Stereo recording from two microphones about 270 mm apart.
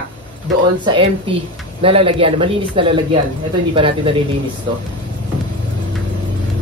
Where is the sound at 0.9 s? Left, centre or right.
Centre.